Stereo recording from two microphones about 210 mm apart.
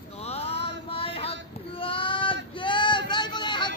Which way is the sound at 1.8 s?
25° left (ahead or behind).